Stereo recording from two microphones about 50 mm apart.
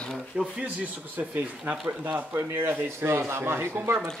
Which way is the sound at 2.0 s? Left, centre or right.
Right.